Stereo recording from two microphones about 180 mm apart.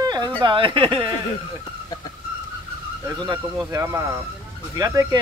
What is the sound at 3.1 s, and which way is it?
Speech, 20° right (ahead or behind).